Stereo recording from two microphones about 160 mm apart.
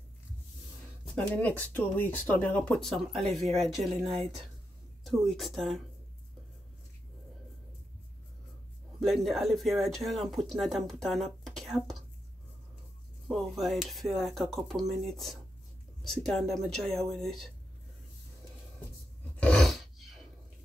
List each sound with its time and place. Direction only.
1.0 s speech: 10° left (ahead or behind)
3.5 s speech: 45° right (ahead or behind)
5.0 s speech: centre (ahead or behind)
9.0 s speech: centre (ahead or behind)
13.3 s speech: centre (ahead or behind)
19.4 s a sound: 5° left (ahead or behind)